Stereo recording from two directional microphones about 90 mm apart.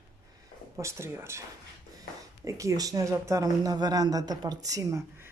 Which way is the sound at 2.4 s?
35° right (ahead or behind).